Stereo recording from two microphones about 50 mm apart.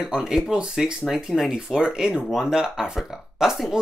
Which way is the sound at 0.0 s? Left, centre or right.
Centre.